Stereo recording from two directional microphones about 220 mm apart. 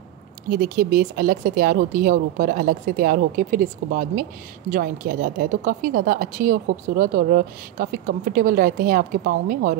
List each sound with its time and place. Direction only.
0.5 s speech: 40° right (ahead or behind)